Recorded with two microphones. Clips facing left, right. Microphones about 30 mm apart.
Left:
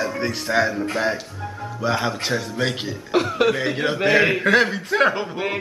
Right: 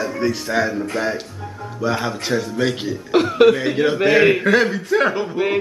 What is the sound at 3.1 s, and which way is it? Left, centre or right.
Speech, centre.